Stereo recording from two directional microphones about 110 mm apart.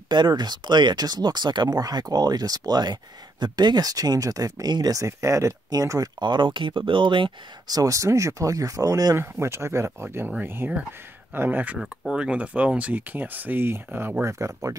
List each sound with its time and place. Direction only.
0.1 s speech: 40° right (ahead or behind)
7.7 s speech: 30° right (ahead or behind)
11.8 s speech: 5° right (ahead or behind); by 14.8 s 25° right (ahead or behind)